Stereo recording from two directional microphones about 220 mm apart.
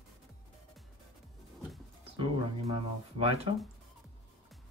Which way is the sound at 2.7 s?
25° right (ahead or behind).